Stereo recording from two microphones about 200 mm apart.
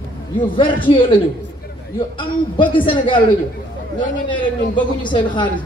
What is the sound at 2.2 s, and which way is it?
A man's voice, 25° left (ahead or behind).